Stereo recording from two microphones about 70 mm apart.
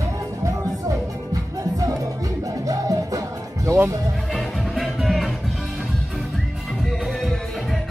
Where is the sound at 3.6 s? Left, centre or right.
Right.